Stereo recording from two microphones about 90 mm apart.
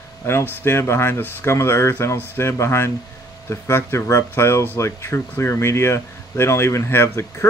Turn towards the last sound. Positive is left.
turn(degrees=30)  # may be behind; listen again after turning